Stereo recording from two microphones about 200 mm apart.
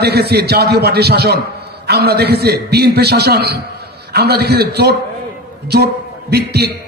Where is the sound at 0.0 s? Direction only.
50° right (ahead or behind).